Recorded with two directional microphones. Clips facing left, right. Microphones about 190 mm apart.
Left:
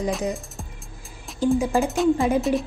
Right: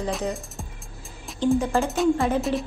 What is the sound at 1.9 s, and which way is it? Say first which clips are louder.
Speech: left 1 dB; centre (ahead or behind).